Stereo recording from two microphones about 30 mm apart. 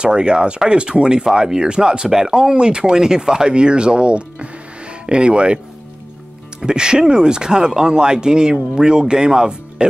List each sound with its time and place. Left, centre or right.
0.0 s speech: right
6.6 s speech: right